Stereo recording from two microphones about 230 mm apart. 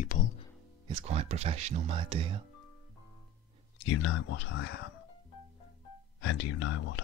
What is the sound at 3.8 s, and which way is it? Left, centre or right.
Speech, left.